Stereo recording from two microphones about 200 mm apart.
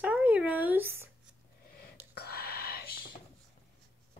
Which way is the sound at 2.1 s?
50° left (ahead or behind).